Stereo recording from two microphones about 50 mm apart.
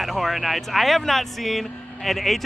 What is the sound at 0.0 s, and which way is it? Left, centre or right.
Speech, centre.